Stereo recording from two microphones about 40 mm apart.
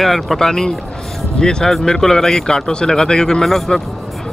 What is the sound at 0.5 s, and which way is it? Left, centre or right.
Speech, centre.